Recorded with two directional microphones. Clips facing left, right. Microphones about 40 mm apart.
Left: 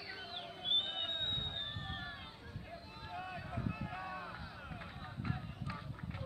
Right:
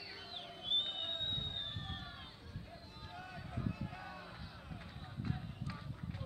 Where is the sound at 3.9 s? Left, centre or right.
Left.